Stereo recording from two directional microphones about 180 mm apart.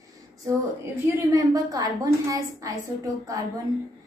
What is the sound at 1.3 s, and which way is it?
A woman's voice, 20° right (ahead or behind).